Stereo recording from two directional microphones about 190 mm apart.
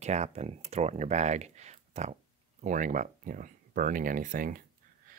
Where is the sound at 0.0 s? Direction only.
35° right (ahead or behind).